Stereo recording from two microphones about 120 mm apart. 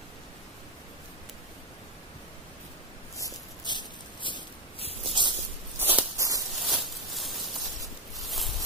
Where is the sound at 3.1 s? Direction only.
35° left (ahead or behind).